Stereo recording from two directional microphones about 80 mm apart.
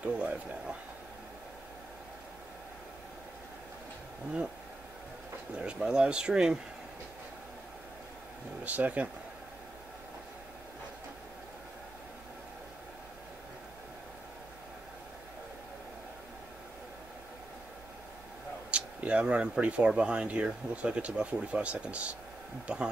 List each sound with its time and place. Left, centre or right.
0.0 s speech: centre
5.6 s speech: centre
8.6 s speech: centre
18.7 s speech: centre